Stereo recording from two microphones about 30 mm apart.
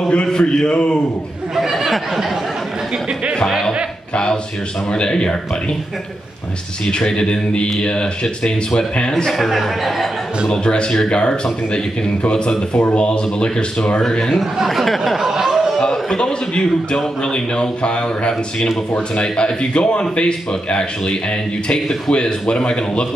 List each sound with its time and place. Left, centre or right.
0.1 s speech: left
1.6 s a sound: centre
4.1 s a sound: left
4.9 s speech: left
7.2 s speech: left
9.4 s speech: centre
10.5 s speech: left
14.7 s speech: centre
15.1 s a sound: centre
16.2 s a man's voice: left
19.3 s speech: left
21.7 s a man's voice: centre
22.1 s speech: left